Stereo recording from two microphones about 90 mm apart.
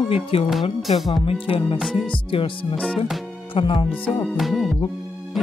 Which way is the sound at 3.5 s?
70° left (ahead or behind).